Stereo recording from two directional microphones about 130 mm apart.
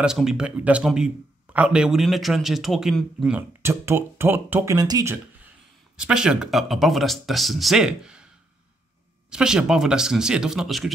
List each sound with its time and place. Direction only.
0.0 s a man's voice: 5° right (ahead or behind)
3.3 s speech: 20° right (ahead or behind)
4.7 s speech: 30° right (ahead or behind)
5.9 s a man's voice: 5° right (ahead or behind)
9.3 s a man's voice: 5° right (ahead or behind)